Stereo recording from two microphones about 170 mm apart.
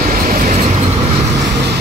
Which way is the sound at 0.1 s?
60° right (ahead or behind).